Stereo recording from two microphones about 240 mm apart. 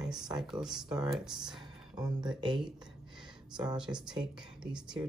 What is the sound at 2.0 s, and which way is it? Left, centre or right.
Speech, centre.